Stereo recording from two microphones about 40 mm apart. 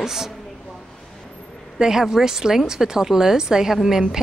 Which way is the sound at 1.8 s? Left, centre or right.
Centre.